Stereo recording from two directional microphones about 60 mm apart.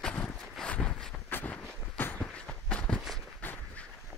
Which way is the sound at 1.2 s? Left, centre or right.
Left.